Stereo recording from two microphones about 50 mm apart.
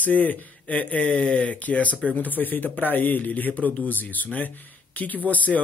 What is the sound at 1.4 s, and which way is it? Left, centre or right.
Speech, left.